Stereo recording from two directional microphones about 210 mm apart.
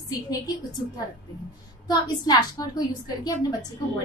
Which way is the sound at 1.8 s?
20° left (ahead or behind).